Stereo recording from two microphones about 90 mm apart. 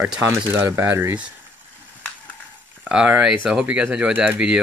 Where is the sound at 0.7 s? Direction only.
30° right (ahead or behind).